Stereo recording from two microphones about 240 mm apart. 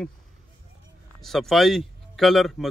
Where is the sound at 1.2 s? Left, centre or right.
Centre.